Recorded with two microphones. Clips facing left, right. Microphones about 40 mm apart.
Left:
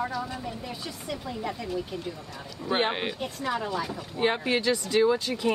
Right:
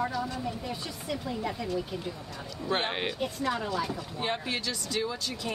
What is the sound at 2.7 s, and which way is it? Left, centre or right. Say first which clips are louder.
Speech: left 4 dB; centre.